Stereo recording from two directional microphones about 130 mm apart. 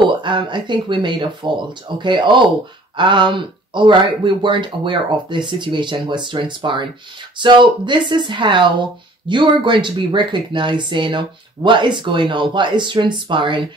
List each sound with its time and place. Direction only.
0.0 s speech: 40° right (ahead or behind)